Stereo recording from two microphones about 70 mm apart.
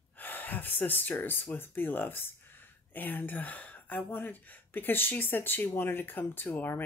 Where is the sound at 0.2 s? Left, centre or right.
Left.